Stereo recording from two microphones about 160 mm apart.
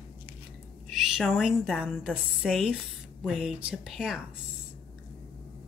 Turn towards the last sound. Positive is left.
turn(degrees=-5)  # may be behind; listen again after turning